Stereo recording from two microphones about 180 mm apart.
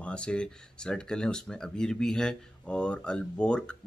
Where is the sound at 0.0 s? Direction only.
5° left (ahead or behind).